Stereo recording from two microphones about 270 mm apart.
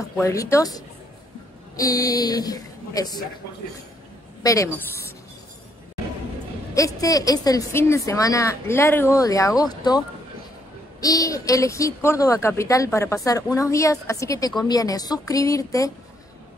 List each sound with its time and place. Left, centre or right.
0.2 s a woman's voice: centre
4.4 s a woman's voice: centre
6.7 s a woman's voice: centre